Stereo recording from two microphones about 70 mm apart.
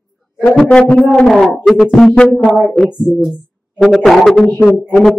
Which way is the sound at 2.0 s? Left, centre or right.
Centre.